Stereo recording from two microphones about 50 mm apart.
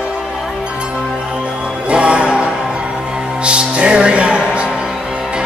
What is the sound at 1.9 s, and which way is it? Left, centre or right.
Music, right.